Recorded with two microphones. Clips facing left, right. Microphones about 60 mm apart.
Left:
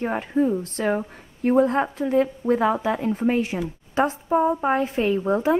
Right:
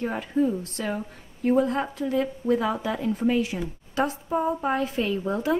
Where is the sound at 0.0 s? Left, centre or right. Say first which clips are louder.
Left 3 dB; left.